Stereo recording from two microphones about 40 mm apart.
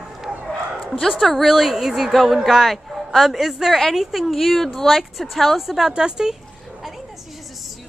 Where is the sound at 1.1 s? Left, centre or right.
Centre.